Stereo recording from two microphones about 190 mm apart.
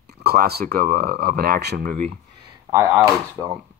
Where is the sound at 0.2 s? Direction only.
55° right (ahead or behind).